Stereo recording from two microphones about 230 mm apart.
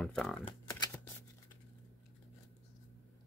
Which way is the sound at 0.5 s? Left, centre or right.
Centre.